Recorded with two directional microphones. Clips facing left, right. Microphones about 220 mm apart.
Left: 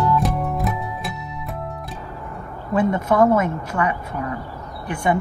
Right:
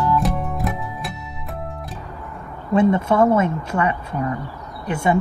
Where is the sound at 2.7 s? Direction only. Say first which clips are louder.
Right 2 dB; 25° right (ahead or behind).